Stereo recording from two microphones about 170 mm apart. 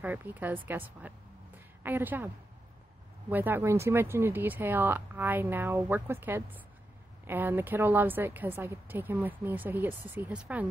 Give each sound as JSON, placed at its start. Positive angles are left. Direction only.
{"t": 0.0, "sound": "a woman's voice", "side_deg": -10}